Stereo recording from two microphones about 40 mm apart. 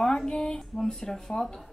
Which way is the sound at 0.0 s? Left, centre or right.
Centre.